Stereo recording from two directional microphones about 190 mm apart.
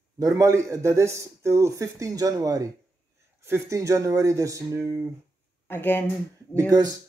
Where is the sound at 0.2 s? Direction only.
20° right (ahead or behind).